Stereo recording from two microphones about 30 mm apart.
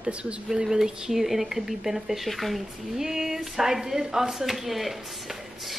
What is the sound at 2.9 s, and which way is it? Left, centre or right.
Speech, centre.